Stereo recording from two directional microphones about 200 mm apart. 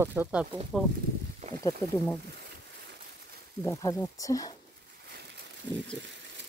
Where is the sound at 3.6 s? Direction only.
15° left (ahead or behind).